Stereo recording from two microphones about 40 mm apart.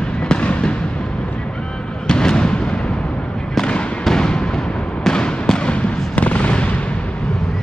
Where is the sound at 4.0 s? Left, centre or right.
Centre; by 6.9 s left.